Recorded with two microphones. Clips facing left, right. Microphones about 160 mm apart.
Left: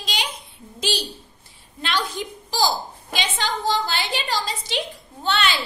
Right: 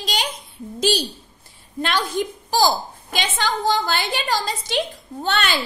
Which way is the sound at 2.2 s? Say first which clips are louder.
Right 5 dB; 50° right (ahead or behind).